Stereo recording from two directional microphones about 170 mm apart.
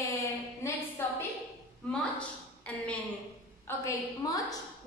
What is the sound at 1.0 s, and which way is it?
Speech, 15° left (ahead or behind).